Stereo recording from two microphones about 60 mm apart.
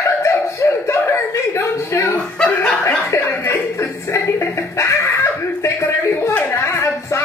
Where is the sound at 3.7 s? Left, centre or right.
Left.